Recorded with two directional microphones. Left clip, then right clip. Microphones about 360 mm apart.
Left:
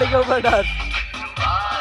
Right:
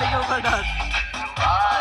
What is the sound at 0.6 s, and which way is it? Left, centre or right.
Music, right.